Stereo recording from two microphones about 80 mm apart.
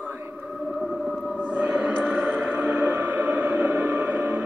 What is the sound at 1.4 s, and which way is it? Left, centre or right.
Music, centre.